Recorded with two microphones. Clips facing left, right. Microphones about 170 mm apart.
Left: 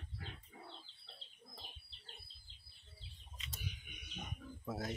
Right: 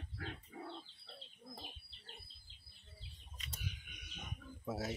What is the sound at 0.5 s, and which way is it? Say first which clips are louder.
Bird: right 8 dB; 70° right (ahead or behind).